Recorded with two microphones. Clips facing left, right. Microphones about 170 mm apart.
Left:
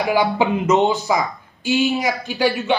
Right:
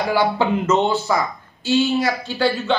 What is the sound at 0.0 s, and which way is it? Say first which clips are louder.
A man's voice: left 1 dB; 15° left (ahead or behind).